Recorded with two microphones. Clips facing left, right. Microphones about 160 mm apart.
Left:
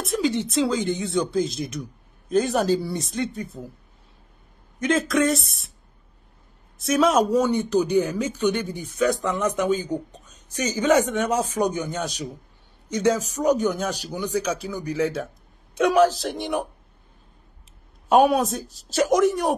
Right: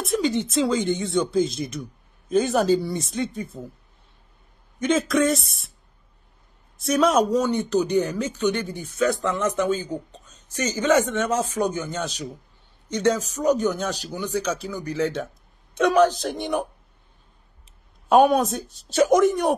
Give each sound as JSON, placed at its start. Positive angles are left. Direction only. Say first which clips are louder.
{"t": 0.0, "sound": "speech", "louder": "right 1 dB", "side_deg": 0}
{"t": 4.7, "sound": "speech", "louder": "right 1 dB", "side_deg": 0}
{"t": 6.8, "sound": "speech", "louder": "even", "side_deg": 0}
{"t": 7.2, "sound": "speech", "louder": "left 1 dB", "side_deg": 10}
{"t": 18.0, "sound": "speech", "louder": "right 1 dB", "side_deg": 0}